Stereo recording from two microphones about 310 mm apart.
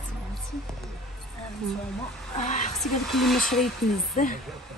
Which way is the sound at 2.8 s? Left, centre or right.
Centre.